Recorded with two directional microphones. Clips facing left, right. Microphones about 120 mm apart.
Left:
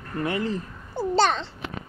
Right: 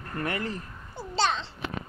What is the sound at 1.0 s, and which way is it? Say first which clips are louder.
Babbling: left 6 dB; 50° left (ahead or behind).